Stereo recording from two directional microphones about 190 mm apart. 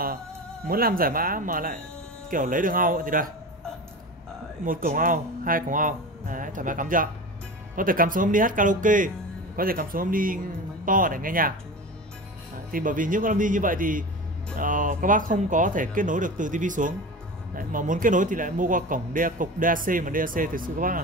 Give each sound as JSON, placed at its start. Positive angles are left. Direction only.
{"t": 0.7, "sound": "speech", "side_deg": -50}
{"t": 4.6, "sound": "speech", "side_deg": -45}
{"t": 12.7, "sound": "speech", "side_deg": -45}